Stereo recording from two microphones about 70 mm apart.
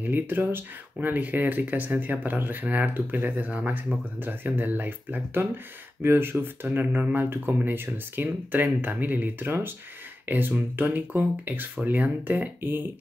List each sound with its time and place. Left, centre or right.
0.0 s speech: right